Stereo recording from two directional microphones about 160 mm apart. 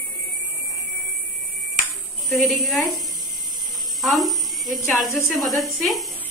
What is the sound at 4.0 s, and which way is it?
A woman's voice, centre (ahead or behind).